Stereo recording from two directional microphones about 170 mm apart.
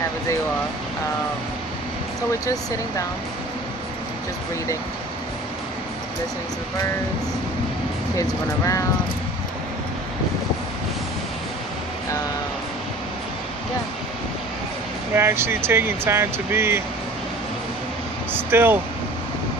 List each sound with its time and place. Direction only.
2.4 s speech: 20° left (ahead or behind)
8.2 s speech: 20° left (ahead or behind)
15.1 s speech: 15° right (ahead or behind)
18.3 s speech: 15° right (ahead or behind)